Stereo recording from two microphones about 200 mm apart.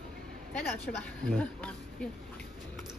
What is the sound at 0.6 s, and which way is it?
Speech, 5° left (ahead or behind).